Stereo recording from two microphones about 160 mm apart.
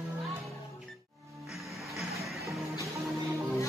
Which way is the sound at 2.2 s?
20° right (ahead or behind).